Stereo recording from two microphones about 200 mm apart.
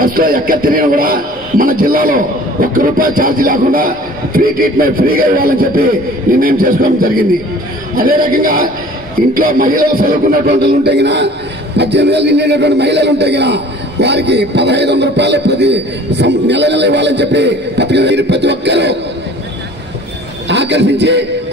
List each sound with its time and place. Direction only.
0.0 s a man's voice: 45° right (ahead or behind)
20.4 s a man's voice: 60° right (ahead or behind)